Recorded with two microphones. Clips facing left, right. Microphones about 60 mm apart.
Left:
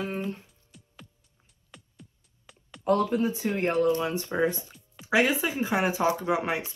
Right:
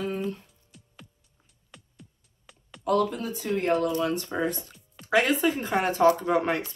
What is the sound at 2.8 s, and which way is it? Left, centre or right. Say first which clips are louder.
Speech: even; left.